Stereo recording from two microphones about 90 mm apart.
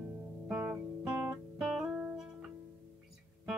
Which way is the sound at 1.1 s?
15° right (ahead or behind).